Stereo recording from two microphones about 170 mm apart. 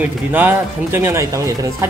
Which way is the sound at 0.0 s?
10° right (ahead or behind).